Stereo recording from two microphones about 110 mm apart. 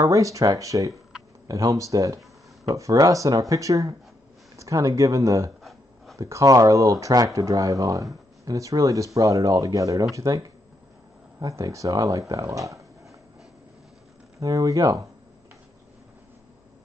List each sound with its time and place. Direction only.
0.0 s speech: 30° right (ahead or behind)
5.6 s a sound: centre (ahead or behind)
6.1 s speech: 30° right (ahead or behind)
14.4 s speech: 30° right (ahead or behind)